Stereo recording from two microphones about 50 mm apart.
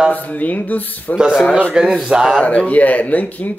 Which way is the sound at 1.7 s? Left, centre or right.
Centre.